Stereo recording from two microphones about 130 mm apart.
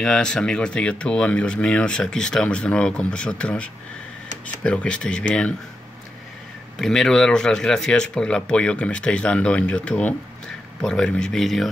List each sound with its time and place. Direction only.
0.0 s speech: 5° left (ahead or behind)
6.8 s speech: 5° left (ahead or behind)